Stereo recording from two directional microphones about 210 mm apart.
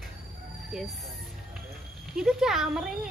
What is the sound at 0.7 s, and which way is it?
Speech, centre (ahead or behind).